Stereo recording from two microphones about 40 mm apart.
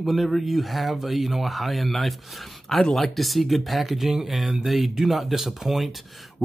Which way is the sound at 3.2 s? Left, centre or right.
Centre.